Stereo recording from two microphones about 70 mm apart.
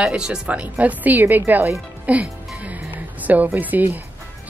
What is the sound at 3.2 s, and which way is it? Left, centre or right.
Speech, right.